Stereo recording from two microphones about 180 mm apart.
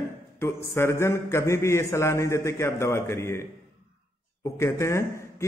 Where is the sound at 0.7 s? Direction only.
15° left (ahead or behind).